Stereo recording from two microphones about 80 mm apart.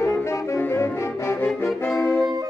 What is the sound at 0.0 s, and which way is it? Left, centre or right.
Saxophone, left.